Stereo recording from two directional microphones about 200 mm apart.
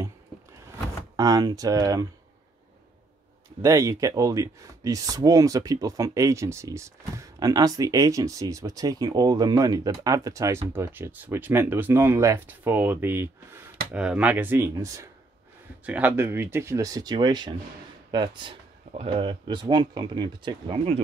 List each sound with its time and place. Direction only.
1.1 s speech: 20° right (ahead or behind)
3.6 s speech: 15° right (ahead or behind)